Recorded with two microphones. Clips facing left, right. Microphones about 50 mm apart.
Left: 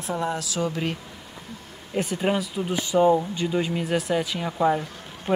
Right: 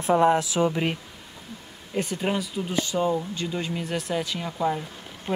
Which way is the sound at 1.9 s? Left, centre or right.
Centre.